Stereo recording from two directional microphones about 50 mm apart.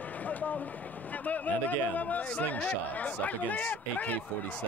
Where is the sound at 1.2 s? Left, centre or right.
Left.